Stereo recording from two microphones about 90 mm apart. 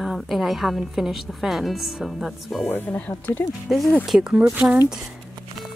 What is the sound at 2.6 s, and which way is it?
Speech, 25° left (ahead or behind).